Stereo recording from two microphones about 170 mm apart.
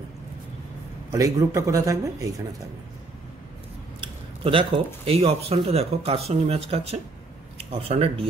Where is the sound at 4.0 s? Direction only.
30° right (ahead or behind).